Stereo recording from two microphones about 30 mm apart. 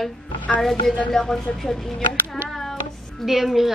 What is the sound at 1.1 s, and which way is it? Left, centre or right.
A woman's voice, centre.